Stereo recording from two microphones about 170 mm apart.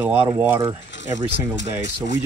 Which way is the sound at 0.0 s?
10° right (ahead or behind).